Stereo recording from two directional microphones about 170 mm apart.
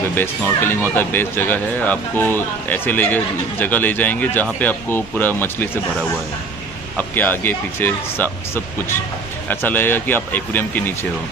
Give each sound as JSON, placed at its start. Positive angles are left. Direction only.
{"t": 0.1, "sound": "speech", "side_deg": 10}
{"t": 7.0, "sound": "speech", "side_deg": 10}
{"t": 9.5, "sound": "speech", "side_deg": 10}